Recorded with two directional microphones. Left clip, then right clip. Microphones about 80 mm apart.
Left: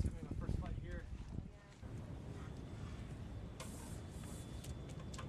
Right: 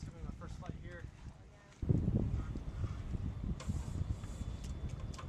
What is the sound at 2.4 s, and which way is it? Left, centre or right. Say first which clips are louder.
Vehicle: right 4 dB; centre.